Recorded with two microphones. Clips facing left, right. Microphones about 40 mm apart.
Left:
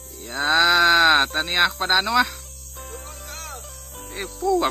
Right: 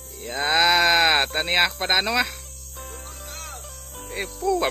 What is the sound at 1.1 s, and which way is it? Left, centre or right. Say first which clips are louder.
Speech: left 1 dB; centre.